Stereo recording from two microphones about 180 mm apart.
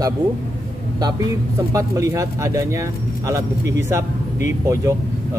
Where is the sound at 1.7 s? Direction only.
15° right (ahead or behind).